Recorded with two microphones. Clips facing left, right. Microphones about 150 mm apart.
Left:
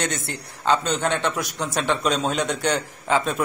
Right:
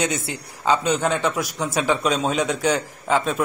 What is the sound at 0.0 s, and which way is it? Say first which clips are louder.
A man's voice: right 3 dB; 5° right (ahead or behind).